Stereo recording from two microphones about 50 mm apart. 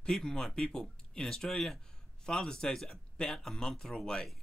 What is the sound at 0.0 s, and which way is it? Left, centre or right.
Speech, centre.